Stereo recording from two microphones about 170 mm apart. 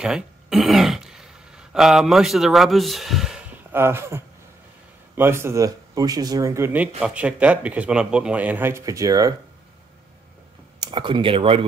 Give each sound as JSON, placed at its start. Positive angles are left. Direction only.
{"t": 0.0, "sound": "speech", "side_deg": -5}
{"t": 10.8, "sound": "speech", "side_deg": -25}